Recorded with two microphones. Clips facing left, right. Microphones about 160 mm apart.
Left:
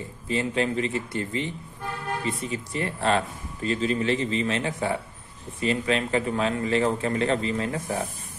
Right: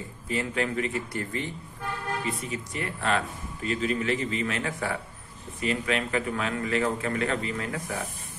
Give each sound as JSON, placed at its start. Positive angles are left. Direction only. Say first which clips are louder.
{"t": 0.3, "sound": "a man's voice", "louder": "left 3 dB", "side_deg": 25}
{"t": 2.5, "sound": "a man's voice", "louder": "left 4 dB", "side_deg": 30}